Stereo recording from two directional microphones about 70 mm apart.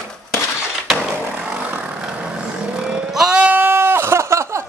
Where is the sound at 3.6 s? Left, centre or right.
Right.